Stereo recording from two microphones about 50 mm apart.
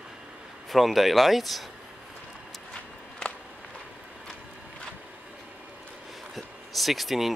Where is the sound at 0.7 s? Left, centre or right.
Centre.